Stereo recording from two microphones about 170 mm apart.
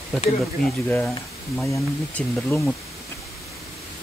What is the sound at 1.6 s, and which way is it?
Speech, 15° left (ahead or behind).